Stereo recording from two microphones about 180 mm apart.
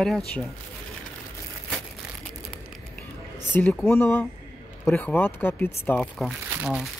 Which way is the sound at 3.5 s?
10° left (ahead or behind).